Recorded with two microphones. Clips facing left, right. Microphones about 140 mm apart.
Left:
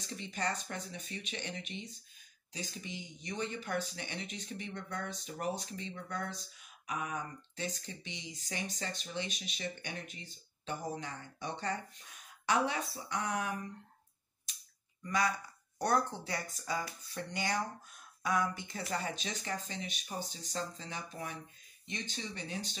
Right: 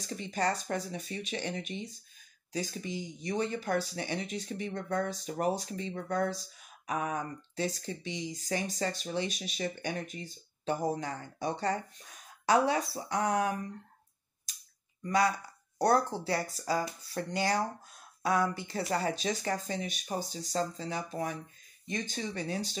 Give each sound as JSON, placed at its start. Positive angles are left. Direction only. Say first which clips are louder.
{"t": 0.0, "sound": "speech", "louder": "right 6 dB", "side_deg": -40}
{"t": 15.0, "sound": "speech", "louder": "right 5 dB", "side_deg": -30}